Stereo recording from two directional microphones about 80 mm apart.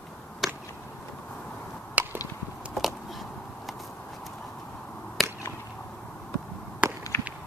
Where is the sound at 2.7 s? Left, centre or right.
Centre.